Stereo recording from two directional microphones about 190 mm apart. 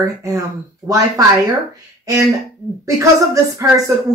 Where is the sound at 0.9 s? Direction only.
15° right (ahead or behind).